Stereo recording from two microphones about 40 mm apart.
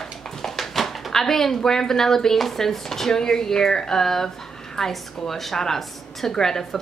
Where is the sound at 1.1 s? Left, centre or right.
Centre.